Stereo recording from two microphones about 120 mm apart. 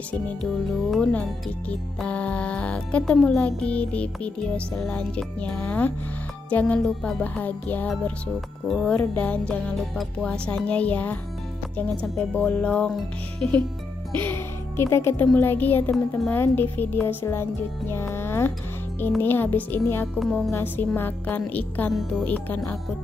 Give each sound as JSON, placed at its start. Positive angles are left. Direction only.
{"t": 0.4, "sound": "speech", "side_deg": 0}
{"t": 8.6, "sound": "speech", "side_deg": 0}
{"t": 8.9, "sound": "speech", "side_deg": 10}
{"t": 14.1, "sound": "speech", "side_deg": 20}
{"t": 20.2, "sound": "speech", "side_deg": 5}
{"t": 20.5, "sound": "speech", "side_deg": 15}